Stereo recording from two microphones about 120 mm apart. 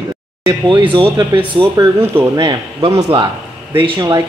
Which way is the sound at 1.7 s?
20° right (ahead or behind).